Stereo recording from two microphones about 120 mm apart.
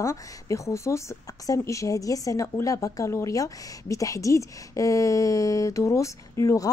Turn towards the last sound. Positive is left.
turn(degrees=25)  # may be behind; listen again after turning